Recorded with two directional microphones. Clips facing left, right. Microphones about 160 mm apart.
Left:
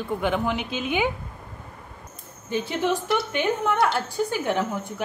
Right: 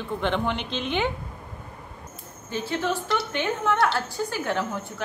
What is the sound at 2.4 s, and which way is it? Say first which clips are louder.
A woman's voice: left 3 dB; 15° left (ahead or behind).